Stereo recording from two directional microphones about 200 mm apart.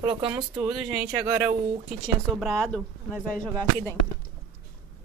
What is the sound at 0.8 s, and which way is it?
Speech, 10° right (ahead or behind).